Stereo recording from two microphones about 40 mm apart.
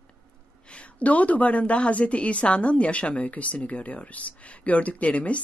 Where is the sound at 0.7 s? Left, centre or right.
Left.